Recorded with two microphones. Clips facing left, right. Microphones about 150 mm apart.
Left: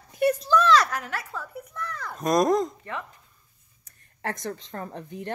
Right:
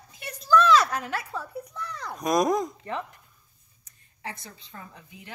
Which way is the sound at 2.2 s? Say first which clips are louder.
Left 2 dB; centre (ahead or behind).